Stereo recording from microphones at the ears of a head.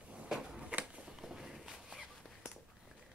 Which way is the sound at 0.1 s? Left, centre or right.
Centre.